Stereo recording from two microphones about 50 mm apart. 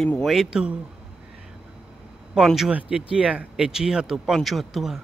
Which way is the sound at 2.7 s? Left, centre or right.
Right.